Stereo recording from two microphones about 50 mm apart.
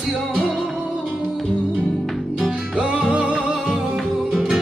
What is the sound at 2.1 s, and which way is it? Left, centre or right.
Music, centre.